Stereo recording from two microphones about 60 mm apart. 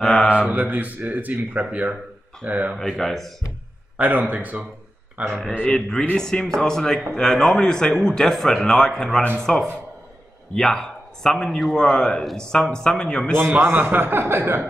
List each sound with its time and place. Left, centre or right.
0.0 s a man's voice: centre
0.5 s speech: right
3.0 s a man's voice: centre
4.0 s speech: right
5.7 s a man's voice: centre
13.5 s a man's voice: right